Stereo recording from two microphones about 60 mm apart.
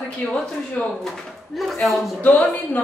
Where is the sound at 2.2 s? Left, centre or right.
Left.